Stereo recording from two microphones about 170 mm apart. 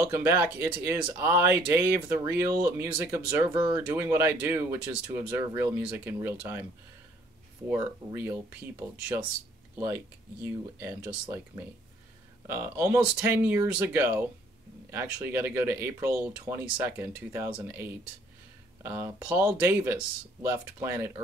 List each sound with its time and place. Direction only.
0.0 s speech: 15° right (ahead or behind)
7.7 s speech: 10° right (ahead or behind)
10.4 s speech: 15° right (ahead or behind)
12.4 s speech: 15° right (ahead or behind)